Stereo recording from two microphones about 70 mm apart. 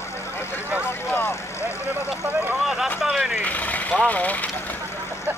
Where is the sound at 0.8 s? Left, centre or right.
Left.